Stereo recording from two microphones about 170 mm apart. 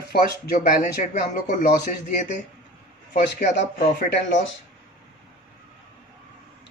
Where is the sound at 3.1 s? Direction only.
50° left (ahead or behind).